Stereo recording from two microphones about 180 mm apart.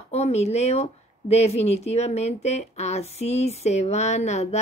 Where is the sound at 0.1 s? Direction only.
35° left (ahead or behind).